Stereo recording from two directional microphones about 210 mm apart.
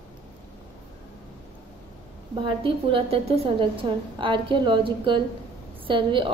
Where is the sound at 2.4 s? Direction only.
25° right (ahead or behind).